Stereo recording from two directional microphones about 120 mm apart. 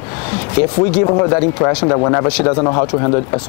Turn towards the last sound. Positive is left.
turn(degrees=30)  # may be behind; listen again after turning